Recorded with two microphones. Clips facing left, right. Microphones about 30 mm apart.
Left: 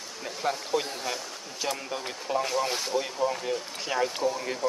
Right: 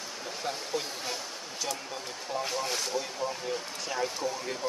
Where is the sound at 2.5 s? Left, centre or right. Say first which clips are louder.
Left 4 dB; centre.